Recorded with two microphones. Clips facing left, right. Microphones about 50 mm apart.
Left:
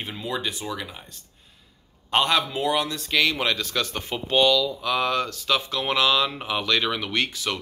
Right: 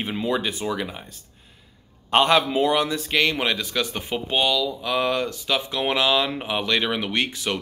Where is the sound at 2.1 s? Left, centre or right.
Centre.